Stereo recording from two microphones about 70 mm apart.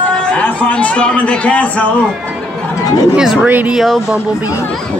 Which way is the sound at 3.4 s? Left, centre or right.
Right.